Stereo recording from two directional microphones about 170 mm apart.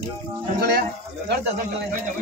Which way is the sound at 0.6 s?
65° right (ahead or behind).